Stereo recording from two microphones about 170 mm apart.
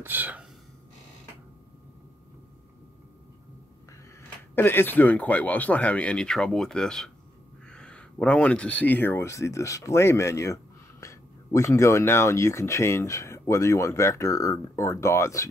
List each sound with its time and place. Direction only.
0.0 s speech: 10° right (ahead or behind)
4.6 s speech: 10° left (ahead or behind)